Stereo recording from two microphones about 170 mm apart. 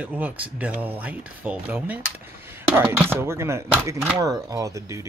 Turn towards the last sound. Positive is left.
turn(degrees=-20)  # may be behind; listen again after turning